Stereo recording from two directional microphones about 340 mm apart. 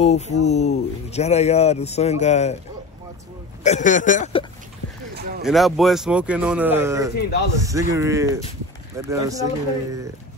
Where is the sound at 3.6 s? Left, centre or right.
Left.